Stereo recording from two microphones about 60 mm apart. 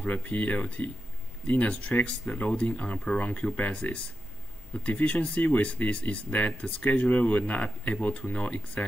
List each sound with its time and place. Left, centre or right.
0.0 s speech: left
2.3 s speech: left